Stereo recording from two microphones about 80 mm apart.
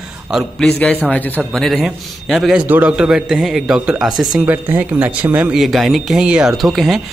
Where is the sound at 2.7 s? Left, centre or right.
Centre.